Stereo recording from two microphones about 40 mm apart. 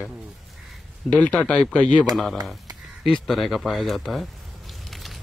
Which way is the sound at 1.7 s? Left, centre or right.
Left.